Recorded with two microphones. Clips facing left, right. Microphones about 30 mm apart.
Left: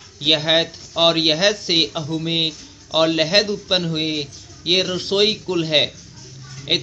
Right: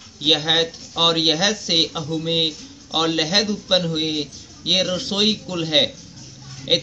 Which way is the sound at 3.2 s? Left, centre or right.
Left.